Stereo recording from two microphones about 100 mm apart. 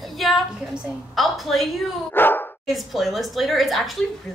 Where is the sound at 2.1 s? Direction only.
20° left (ahead or behind).